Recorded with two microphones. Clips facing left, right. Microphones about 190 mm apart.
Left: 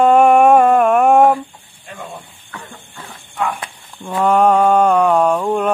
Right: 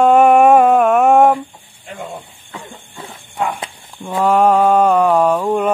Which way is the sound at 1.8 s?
25° right (ahead or behind).